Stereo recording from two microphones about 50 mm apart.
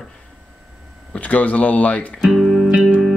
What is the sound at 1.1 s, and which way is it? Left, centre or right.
Speech, left.